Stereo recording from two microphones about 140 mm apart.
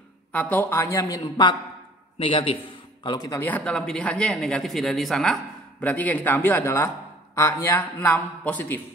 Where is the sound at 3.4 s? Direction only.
10° left (ahead or behind).